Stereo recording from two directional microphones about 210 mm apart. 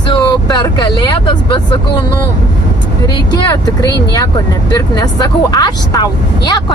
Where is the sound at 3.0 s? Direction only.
20° left (ahead or behind).